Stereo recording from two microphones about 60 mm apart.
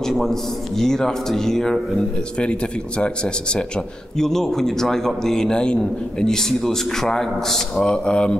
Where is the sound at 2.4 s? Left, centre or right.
Centre.